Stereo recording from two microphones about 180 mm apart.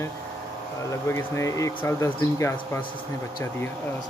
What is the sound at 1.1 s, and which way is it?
Speech, 15° left (ahead or behind).